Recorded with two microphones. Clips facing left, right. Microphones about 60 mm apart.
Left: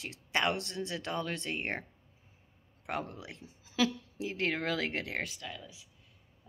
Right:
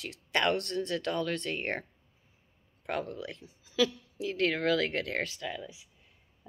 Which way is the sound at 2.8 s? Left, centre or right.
Left.